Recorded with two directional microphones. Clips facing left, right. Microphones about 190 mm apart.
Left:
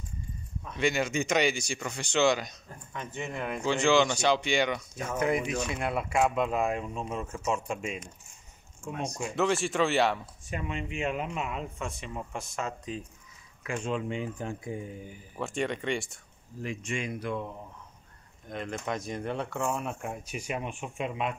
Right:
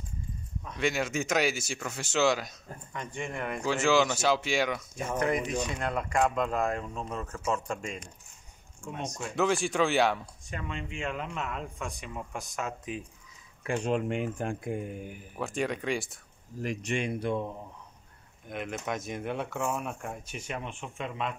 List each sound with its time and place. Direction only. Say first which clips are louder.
0.7 s speech: left 2 dB; centre (ahead or behind)
3.6 s speech: left 1 dB; 5° right (ahead or behind)
5.2 s speech: left 1 dB; 10° left (ahead or behind)
10.5 s speech: left 3 dB; 15° left (ahead or behind); by 13.0 s 5° right (ahead or behind)
13.8 s speech: right 2 dB; 65° right (ahead or behind)
15.3 s speech: even; centre (ahead or behind)
17.1 s speech: right 3 dB; 25° right (ahead or behind)
18.5 s speech: even; 5° right (ahead or behind); by 21.4 s 10° left (ahead or behind)